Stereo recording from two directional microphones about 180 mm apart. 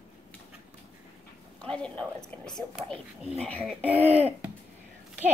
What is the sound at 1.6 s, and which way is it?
A woman's voice, 5° left (ahead or behind).